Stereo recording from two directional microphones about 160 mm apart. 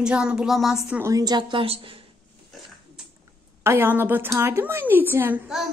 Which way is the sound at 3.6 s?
15° right (ahead or behind).